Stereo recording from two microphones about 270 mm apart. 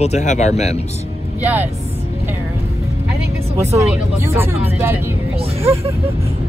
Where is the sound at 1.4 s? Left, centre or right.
Centre.